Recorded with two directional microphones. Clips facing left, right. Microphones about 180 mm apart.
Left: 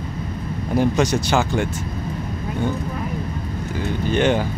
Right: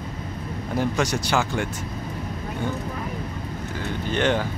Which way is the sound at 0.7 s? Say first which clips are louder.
Left 6 dB; 20° left (ahead or behind).